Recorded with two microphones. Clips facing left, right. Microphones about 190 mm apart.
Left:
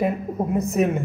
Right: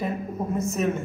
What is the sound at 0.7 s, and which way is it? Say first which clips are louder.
Speech: left 4 dB; 15° left (ahead or behind).